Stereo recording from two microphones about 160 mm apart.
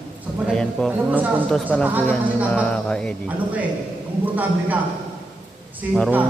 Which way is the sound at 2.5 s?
5° left (ahead or behind).